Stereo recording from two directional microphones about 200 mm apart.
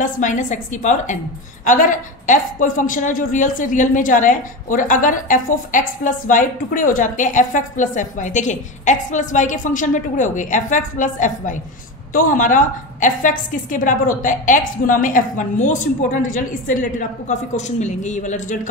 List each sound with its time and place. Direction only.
0.0 s a woman's voice: 40° left (ahead or behind)